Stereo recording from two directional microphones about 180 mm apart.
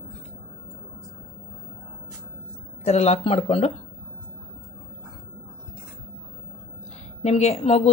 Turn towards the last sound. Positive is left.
turn(degrees=35)  # may be behind; listen again after turning